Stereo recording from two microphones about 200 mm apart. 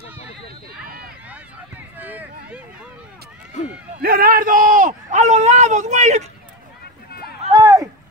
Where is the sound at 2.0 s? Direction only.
10° right (ahead or behind).